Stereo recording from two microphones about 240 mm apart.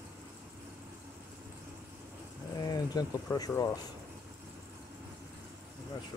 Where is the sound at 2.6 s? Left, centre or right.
Centre.